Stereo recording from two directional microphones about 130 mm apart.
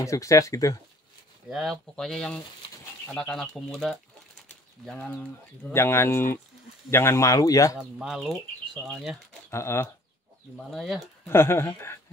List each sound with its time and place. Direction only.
0.0 s speech: 25° left (ahead or behind)
1.5 s speech: centre (ahead or behind); by 7.8 s 25° left (ahead or behind)
7.8 s speech: 5° right (ahead or behind)
9.5 s speech: 20° left (ahead or behind)
10.7 s speech: centre (ahead or behind)
11.2 s speech: 20° left (ahead or behind)